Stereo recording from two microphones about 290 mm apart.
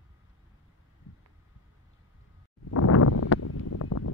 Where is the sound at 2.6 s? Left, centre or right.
Left.